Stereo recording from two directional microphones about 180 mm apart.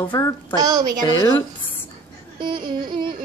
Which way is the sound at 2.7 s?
25° right (ahead or behind).